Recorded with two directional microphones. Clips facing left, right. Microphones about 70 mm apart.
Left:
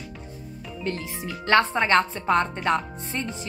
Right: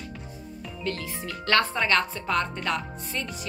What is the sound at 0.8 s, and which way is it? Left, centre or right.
Speech, left.